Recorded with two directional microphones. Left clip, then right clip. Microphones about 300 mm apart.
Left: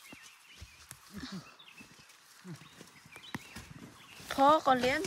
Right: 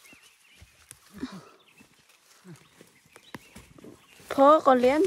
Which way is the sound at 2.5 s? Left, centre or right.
Centre.